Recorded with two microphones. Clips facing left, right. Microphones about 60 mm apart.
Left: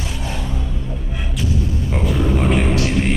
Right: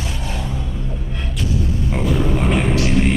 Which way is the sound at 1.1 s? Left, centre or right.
Centre.